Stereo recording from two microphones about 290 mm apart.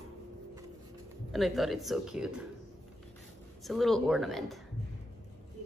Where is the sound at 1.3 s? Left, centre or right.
Centre.